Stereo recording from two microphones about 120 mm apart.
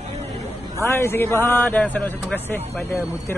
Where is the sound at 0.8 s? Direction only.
20° left (ahead or behind).